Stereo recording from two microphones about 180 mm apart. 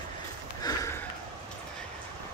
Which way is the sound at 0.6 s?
20° left (ahead or behind).